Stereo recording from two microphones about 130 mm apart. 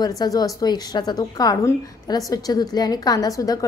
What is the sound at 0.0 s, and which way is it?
A woman's voice, 30° left (ahead or behind).